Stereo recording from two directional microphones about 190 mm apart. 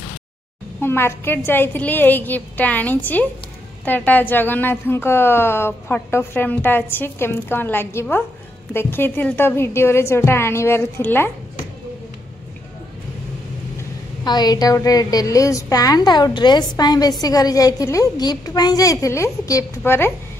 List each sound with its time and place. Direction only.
0.7 s a woman's voice: 10° left (ahead or behind)
14.2 s a woman's voice: 20° left (ahead or behind)